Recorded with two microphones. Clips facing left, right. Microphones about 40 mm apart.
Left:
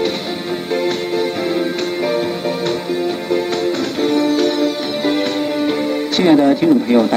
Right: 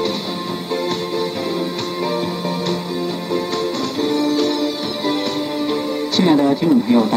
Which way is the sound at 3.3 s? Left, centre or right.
Left.